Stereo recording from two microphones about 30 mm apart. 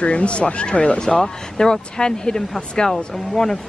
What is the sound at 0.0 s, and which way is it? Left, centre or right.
Speech, left.